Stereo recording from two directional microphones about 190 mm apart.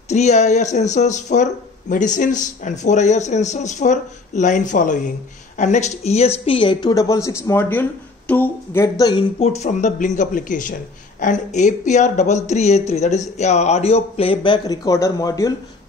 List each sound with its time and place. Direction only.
0.1 s a man's voice: 35° left (ahead or behind); by 9.2 s 20° left (ahead or behind)
9.4 s a man's voice: 35° left (ahead or behind); by 15.5 s 20° left (ahead or behind)